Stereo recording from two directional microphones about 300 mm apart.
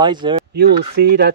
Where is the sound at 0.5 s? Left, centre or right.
Right.